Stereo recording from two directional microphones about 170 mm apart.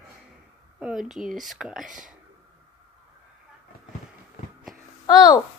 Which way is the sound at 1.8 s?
50° right (ahead or behind).